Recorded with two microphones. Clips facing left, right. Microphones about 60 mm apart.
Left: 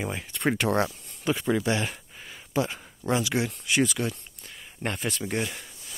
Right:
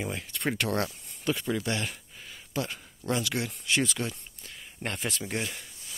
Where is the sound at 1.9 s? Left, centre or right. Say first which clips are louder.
Left 3 dB; left; by 3.5 s centre.